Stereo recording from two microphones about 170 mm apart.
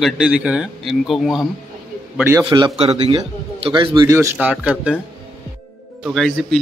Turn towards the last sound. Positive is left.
turn(degrees=0)  # may be behind; listen again after turning